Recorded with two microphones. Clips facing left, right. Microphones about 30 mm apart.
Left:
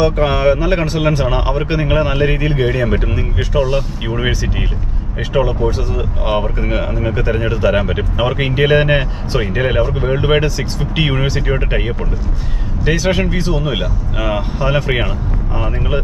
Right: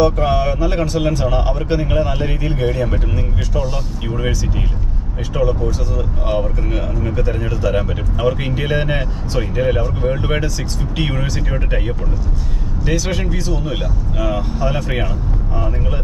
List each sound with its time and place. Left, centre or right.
0.0 s speech: left
12.8 s speech: left